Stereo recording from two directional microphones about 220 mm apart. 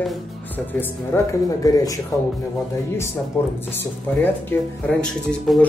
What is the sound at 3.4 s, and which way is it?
Speech, 10° left (ahead or behind).